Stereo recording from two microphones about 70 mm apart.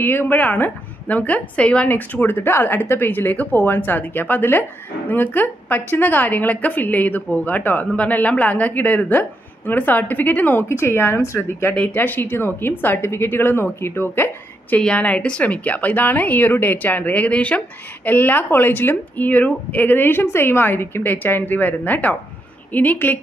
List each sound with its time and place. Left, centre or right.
0.0 s a woman's voice: left
10.7 s a woman's voice: left
11.7 s a woman's voice: left
14.8 s a woman's voice: centre